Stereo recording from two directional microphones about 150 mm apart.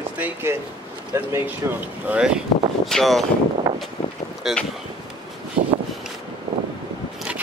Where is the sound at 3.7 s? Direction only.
20° right (ahead or behind).